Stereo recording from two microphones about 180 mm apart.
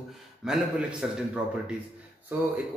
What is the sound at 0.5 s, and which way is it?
Speech, 5° right (ahead or behind).